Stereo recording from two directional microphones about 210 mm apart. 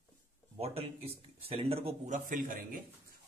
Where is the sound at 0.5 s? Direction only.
30° right (ahead or behind).